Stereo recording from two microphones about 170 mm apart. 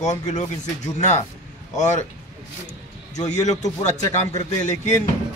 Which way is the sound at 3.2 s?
45° left (ahead or behind).